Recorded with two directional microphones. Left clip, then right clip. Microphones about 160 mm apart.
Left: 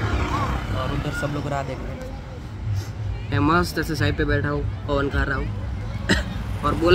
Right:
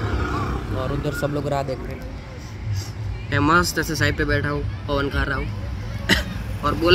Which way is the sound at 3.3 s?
Centre (ahead or behind).